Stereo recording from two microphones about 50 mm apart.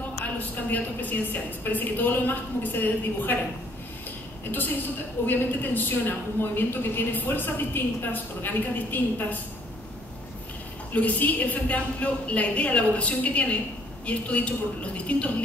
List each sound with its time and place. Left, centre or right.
0.2 s a woman's voice: left
4.5 s a woman's voice: left
10.9 s a woman's voice: left